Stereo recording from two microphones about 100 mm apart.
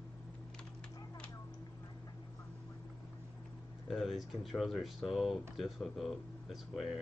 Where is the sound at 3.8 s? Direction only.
Centre (ahead or behind).